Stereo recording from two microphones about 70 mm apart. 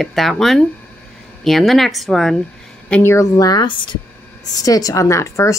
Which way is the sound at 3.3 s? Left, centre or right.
Left.